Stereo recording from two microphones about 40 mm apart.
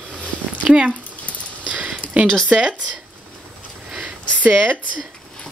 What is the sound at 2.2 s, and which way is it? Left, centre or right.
Speech, centre.